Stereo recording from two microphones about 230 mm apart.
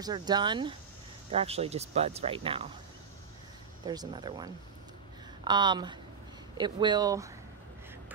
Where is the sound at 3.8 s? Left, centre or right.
Centre.